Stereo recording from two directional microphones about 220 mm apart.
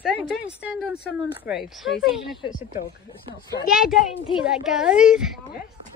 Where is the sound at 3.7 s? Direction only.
Centre (ahead or behind).